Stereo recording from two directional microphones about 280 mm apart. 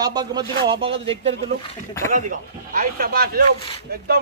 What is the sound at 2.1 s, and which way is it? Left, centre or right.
Speech, right.